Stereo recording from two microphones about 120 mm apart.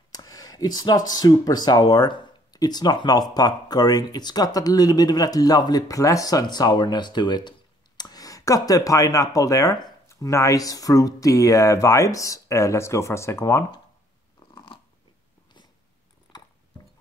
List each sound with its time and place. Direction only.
0.1 s speech: 30° left (ahead or behind)
14.5 s biting: 45° left (ahead or behind)